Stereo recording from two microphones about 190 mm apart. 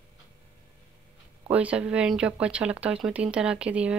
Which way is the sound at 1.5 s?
5° right (ahead or behind).